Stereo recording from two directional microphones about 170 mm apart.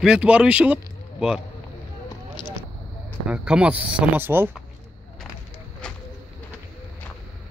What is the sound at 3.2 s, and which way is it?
Speech, 5° right (ahead or behind).